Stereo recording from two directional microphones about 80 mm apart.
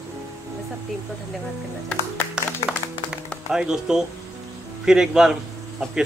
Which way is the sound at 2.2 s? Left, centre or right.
Left.